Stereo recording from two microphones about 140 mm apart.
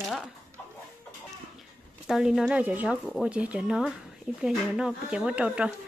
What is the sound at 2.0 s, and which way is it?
Speech, 5° right (ahead or behind).